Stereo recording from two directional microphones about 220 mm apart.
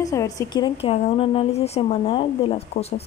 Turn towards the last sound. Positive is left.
turn(degrees=30)  # may be behind; listen again after turning